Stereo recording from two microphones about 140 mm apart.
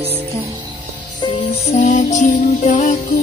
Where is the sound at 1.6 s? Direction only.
60° left (ahead or behind).